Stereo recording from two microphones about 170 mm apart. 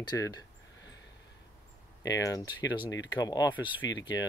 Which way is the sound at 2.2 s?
20° left (ahead or behind).